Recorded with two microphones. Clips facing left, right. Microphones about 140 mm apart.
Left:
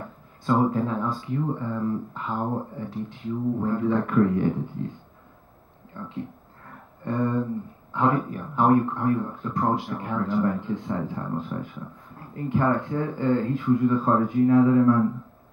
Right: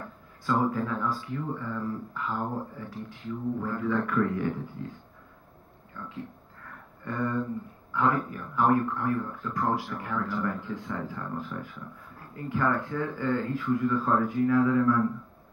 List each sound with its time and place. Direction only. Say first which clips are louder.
0.6 s speech: left 4 dB; 25° left (ahead or behind)
7.1 s a man's voice: left 5 dB; 25° left (ahead or behind)